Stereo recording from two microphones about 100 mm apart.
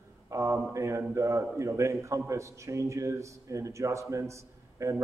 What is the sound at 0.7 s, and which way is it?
A man's voice, 30° right (ahead or behind).